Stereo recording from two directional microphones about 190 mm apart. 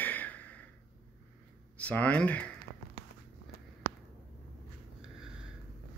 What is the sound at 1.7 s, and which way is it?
Speech, 5° left (ahead or behind).